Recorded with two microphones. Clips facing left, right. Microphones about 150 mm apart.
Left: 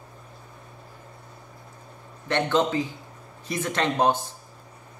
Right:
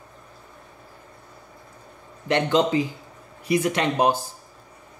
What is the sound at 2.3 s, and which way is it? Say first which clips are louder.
Speech: right 3 dB; 15° right (ahead or behind).